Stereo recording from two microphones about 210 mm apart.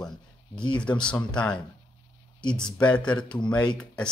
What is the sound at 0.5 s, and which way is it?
Speech, 20° left (ahead or behind).